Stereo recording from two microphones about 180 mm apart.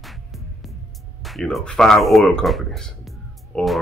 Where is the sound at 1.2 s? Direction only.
Centre (ahead or behind).